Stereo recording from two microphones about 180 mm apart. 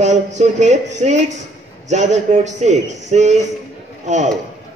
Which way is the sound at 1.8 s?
40° right (ahead or behind).